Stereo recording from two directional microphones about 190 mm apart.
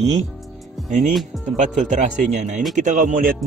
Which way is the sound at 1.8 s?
40° right (ahead or behind).